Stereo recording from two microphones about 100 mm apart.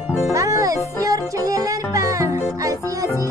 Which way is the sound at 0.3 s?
35° right (ahead or behind).